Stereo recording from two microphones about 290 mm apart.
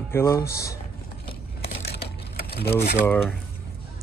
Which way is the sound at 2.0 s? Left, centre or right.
Left.